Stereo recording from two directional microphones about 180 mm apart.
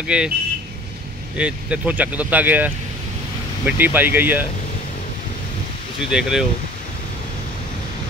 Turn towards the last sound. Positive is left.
turn(degrees=-5)  # may be behind; listen again after turning